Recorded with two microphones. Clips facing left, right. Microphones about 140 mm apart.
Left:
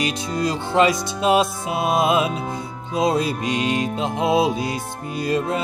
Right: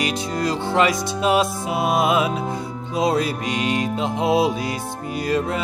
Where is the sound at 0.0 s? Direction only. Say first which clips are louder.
Even; 25° left (ahead or behind).